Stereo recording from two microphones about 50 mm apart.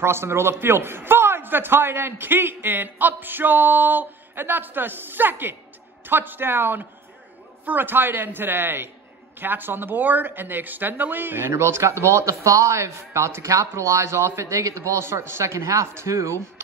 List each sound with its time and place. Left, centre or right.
0.0 s a man's voice: right
11.5 s a man's voice: right
15.9 s speech: right